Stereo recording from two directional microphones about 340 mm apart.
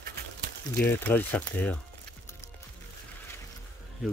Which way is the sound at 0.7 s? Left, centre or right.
Centre.